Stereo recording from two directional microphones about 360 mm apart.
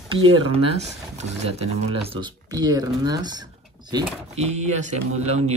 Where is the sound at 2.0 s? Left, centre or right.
Centre.